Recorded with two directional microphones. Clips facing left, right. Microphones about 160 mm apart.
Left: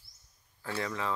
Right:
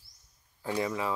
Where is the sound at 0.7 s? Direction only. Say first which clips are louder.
Right 4 dB; 15° right (ahead or behind).